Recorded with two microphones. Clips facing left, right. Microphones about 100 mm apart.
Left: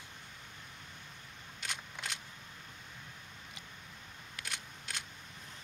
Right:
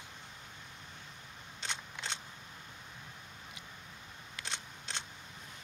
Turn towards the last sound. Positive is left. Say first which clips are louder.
# right 1 dB
turn(degrees=-30)  # may be behind; listen again after turning